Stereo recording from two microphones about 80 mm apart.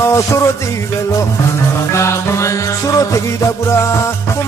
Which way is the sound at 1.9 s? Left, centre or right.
Left.